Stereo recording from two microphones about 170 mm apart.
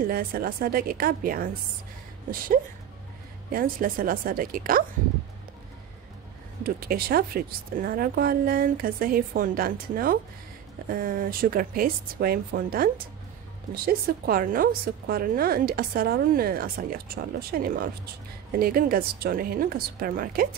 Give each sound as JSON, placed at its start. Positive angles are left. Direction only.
{"t": 0.0, "sound": "a woman's voice", "side_deg": -60}
{"t": 3.5, "sound": "a woman's voice", "side_deg": -60}
{"t": 6.6, "sound": "a woman's voice", "side_deg": -60}